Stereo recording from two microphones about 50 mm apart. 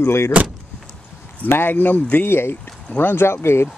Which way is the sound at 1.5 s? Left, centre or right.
Left.